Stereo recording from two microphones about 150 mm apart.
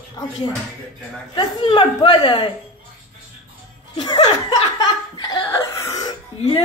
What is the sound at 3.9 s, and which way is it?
Laughter, 30° left (ahead or behind).